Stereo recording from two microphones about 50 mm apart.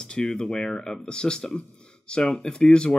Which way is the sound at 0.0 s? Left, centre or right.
Centre.